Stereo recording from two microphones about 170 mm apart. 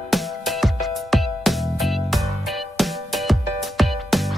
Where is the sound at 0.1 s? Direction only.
Centre (ahead or behind).